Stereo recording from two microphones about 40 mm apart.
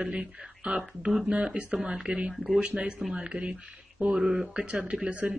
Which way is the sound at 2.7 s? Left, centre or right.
Right.